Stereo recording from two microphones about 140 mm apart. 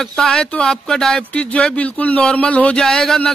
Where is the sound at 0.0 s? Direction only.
5° left (ahead or behind).